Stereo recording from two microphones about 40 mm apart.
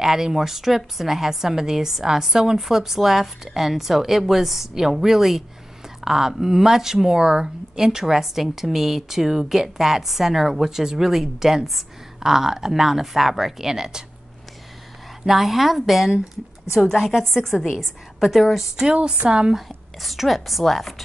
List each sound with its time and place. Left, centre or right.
0.0 s speech: centre
15.2 s a woman's voice: centre
17.2 s a woman's voice: centre
18.9 s speech: right
19.5 s a woman's voice: centre